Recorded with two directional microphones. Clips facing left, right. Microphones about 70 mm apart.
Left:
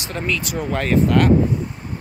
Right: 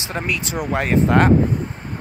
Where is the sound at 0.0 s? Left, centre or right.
Right.